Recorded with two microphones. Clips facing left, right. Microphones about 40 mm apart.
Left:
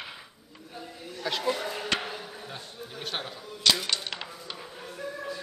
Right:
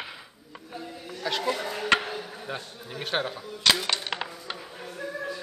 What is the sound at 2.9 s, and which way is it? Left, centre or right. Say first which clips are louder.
Speech: right 7 dB; right.